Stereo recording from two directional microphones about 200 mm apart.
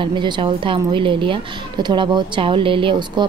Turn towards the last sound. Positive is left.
turn(degrees=-25)  # may be behind; listen again after turning